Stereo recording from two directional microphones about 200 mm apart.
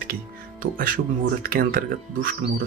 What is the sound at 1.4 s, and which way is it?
Speech, 45° right (ahead or behind).